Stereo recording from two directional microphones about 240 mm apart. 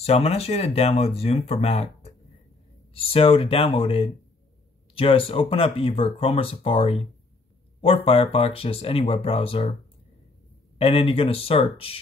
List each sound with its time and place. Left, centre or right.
0.0 s speech: left
10.8 s speech: left